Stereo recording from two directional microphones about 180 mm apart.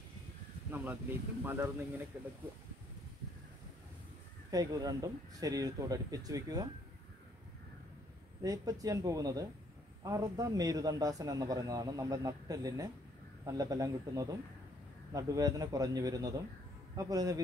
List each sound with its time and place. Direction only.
0.7 s speech: 10° right (ahead or behind)
4.5 s a man's voice: 20° right (ahead or behind)
8.4 s a man's voice: 20° right (ahead or behind)